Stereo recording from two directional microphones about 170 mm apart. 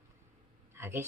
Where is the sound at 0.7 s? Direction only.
15° right (ahead or behind).